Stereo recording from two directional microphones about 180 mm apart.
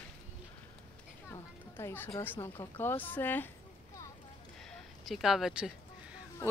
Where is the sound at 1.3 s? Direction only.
15° left (ahead or behind).